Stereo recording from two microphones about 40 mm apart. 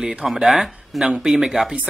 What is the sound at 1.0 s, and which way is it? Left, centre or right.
Speech, centre.